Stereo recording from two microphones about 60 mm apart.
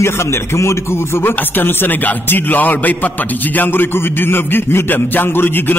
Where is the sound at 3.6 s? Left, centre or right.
Left.